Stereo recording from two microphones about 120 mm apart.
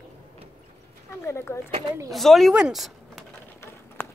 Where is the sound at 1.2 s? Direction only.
20° left (ahead or behind).